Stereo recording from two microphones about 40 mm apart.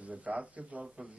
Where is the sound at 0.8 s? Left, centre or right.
Centre.